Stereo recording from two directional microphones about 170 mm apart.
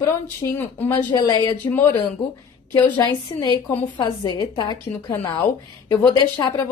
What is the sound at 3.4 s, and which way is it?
A woman's voice, 20° left (ahead or behind).